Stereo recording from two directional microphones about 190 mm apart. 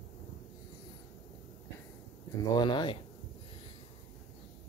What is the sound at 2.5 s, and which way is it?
Speech, 25° left (ahead or behind).